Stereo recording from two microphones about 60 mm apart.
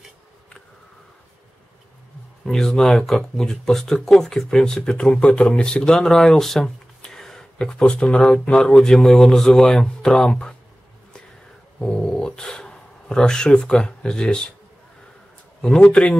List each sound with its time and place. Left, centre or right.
2.4 s speech: centre
11.8 s speech: centre
15.8 s speech: centre